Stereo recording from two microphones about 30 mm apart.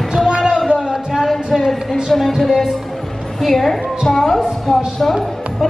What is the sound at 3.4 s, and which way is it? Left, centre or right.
A woman's voice, centre.